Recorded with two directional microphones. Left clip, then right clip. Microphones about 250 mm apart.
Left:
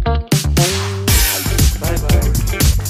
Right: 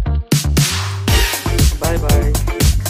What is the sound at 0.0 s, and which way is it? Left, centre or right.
Music, centre.